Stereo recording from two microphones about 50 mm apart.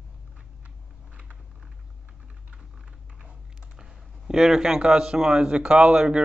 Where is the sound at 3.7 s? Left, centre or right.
Centre.